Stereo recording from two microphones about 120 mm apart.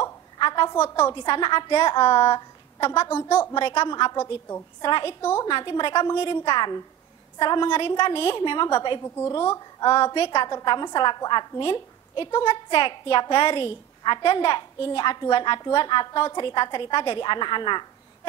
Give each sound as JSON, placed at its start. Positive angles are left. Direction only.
{"t": 0.0, "sound": "a sound", "side_deg": 40}
{"t": 0.7, "sound": "a woman's voice", "side_deg": 20}
{"t": 1.1, "sound": "a woman's voice", "side_deg": 45}
{"t": 2.1, "sound": "a sound", "side_deg": 55}
{"t": 2.9, "sound": "a woman's voice", "side_deg": 20}
{"t": 3.5, "sound": "a woman's voice", "side_deg": 50}
{"t": 4.2, "sound": "a woman's voice", "side_deg": 20}
{"t": 4.8, "sound": "a woman's voice", "side_deg": 45}
{"t": 9.0, "sound": "a woman's voice", "side_deg": 20}
{"t": 9.9, "sound": "a woman's voice", "side_deg": 50}
{"t": 14.6, "sound": "a woman's voice", "side_deg": 35}